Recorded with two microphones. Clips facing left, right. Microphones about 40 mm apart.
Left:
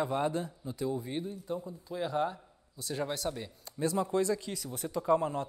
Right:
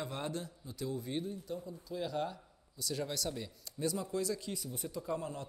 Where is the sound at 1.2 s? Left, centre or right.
Left.